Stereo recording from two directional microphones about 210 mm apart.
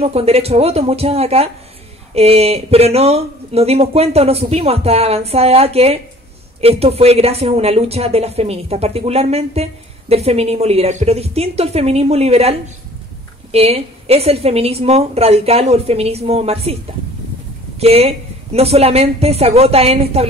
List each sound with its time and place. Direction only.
0.0 s speech: 30° right (ahead or behind)
17.7 s speech: 30° right (ahead or behind)